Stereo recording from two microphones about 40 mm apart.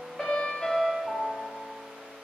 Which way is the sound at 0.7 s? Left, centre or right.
Centre.